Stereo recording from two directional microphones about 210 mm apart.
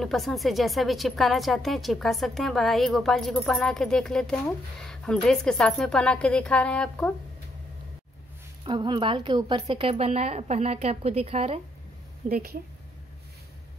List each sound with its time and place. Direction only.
0.0 s a woman's voice: centre (ahead or behind)
8.6 s a woman's voice: 20° right (ahead or behind)
12.3 s a woman's voice: 45° right (ahead or behind)